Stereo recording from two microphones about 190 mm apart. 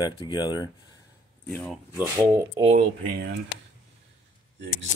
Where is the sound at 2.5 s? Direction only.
30° right (ahead or behind).